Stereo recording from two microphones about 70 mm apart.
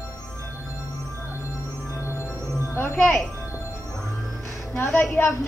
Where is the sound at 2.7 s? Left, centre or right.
Left.